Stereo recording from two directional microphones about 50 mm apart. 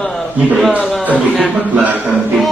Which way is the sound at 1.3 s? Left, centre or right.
Right.